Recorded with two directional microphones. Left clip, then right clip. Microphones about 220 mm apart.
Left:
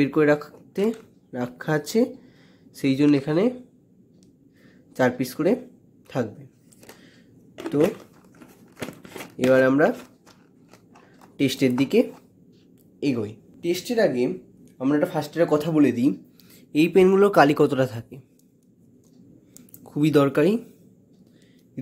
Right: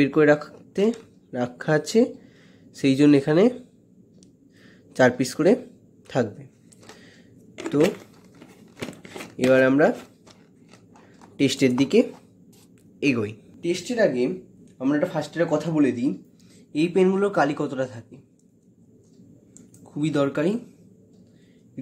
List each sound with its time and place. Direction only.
0.0 s speech: centre (ahead or behind)
4.9 s speech: 5° right (ahead or behind)
7.5 s speech: centre (ahead or behind)
8.4 s a sound: centre (ahead or behind)
11.3 s speech: centre (ahead or behind)
13.6 s speech: 15° left (ahead or behind); by 18.2 s 30° left (ahead or behind)
19.5 s a sound: 30° left (ahead or behind)